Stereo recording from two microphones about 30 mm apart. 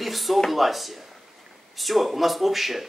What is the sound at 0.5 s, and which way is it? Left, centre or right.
A man's voice, centre.